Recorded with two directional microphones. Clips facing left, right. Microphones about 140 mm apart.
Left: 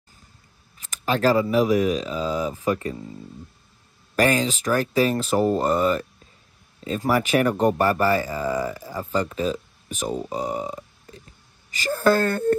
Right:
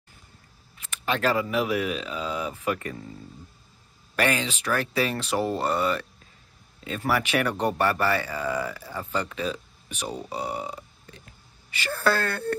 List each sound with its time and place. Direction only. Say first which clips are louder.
0.7 s speech: left 4 dB; 35° left (ahead or behind)
4.2 s speech: left 5 dB; 40° left (ahead or behind)